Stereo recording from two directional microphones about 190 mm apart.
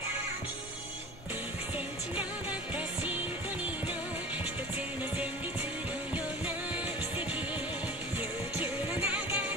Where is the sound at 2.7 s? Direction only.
10° right (ahead or behind).